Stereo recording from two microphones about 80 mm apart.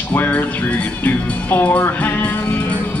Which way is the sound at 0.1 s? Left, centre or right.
Left.